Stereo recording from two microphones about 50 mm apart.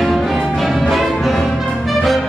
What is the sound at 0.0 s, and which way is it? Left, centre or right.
Music, centre.